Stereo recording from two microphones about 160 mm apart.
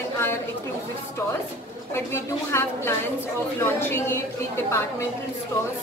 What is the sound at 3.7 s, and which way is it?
Speech, 15° left (ahead or behind).